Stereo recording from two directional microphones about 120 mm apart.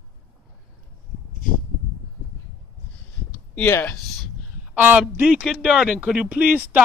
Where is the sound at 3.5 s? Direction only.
15° left (ahead or behind).